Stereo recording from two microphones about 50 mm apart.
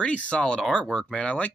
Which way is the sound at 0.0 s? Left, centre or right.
Left.